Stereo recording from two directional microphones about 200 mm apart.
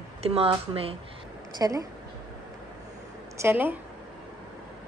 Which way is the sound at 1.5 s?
20° right (ahead or behind).